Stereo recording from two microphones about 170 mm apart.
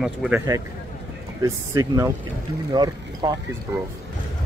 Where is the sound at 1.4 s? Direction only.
20° right (ahead or behind).